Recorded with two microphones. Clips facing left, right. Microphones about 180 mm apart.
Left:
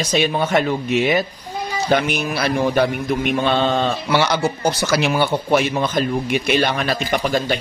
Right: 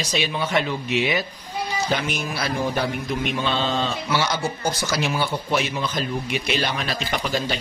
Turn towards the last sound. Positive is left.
turn(degrees=55)  # may be behind; listen again after turning